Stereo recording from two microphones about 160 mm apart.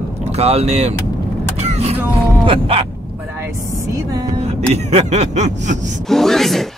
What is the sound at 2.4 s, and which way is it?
Speech, 35° right (ahead or behind).